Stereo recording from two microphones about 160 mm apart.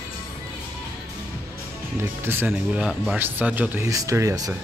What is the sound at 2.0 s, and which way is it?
Speech, 15° right (ahead or behind).